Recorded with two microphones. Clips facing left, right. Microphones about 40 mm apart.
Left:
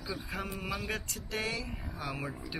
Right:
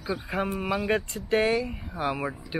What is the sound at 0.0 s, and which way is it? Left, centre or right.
Speech, right.